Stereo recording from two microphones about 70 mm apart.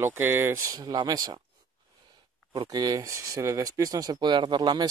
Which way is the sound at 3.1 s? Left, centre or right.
Right.